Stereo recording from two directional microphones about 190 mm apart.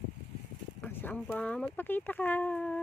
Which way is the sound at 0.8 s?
10° left (ahead or behind).